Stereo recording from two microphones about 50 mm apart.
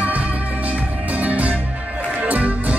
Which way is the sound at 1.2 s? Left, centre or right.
Right.